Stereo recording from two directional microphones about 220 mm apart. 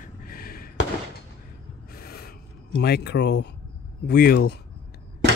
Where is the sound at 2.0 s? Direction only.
45° left (ahead or behind).